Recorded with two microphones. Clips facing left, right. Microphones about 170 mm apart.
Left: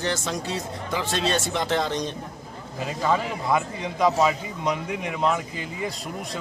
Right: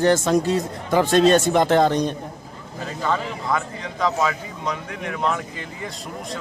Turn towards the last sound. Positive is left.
turn(degrees=10)  # may be behind; listen again after turning